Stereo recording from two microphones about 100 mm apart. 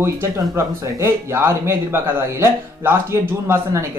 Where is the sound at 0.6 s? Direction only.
25° right (ahead or behind).